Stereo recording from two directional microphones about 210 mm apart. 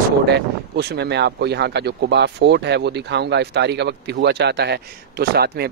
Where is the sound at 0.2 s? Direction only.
50° right (ahead or behind).